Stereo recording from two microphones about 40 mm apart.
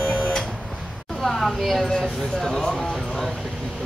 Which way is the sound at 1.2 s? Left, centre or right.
Centre.